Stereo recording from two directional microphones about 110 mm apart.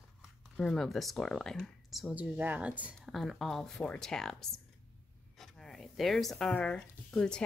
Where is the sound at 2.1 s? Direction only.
15° right (ahead or behind).